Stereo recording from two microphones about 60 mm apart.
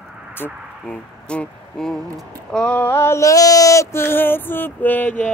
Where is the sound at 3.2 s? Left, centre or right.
Left.